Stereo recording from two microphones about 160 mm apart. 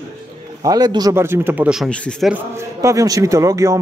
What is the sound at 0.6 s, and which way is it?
Speech, 25° right (ahead or behind).